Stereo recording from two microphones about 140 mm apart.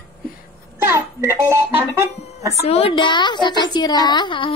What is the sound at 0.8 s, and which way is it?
A child's voice, 20° right (ahead or behind).